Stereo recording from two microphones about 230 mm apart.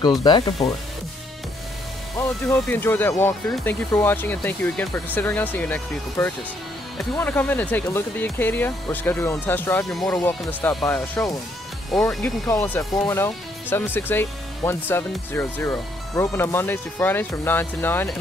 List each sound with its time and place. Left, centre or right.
0.2 s speech: centre
2.1 s speech: centre